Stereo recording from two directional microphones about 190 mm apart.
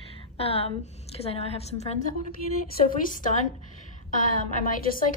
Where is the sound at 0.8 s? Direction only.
35° left (ahead or behind).